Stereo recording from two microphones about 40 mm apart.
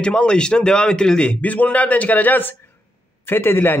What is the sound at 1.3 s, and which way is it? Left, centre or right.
A man's voice, left.